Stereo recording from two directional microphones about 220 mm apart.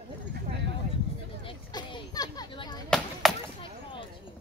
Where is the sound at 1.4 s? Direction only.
20° left (ahead or behind).